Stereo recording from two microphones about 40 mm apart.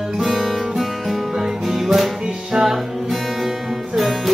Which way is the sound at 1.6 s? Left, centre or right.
Centre.